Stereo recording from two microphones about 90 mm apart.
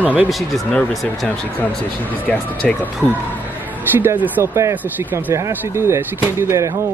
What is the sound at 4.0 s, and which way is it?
Speech, 20° right (ahead or behind).